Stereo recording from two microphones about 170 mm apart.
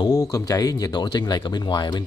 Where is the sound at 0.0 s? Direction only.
20° left (ahead or behind).